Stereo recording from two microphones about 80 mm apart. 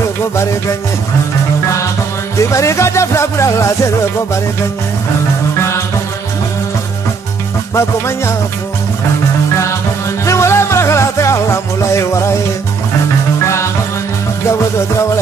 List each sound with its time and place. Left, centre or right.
2.5 s music: left
7.7 s music: left
10.2 s music: left